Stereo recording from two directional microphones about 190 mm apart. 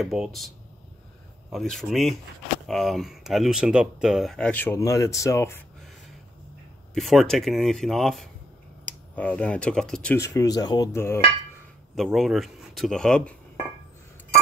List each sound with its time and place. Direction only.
0.0 s speech: centre (ahead or behind)
1.5 s speech: centre (ahead or behind)
6.9 s speech: centre (ahead or behind)
10.1 s speech: 15° left (ahead or behind)
11.9 s a man's voice: centre (ahead or behind)